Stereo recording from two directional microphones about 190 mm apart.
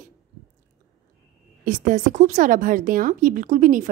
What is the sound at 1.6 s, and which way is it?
A woman's voice, 45° right (ahead or behind).